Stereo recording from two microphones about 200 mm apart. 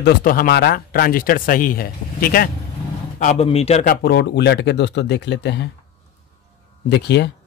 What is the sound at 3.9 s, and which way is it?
Speech, 50° left (ahead or behind).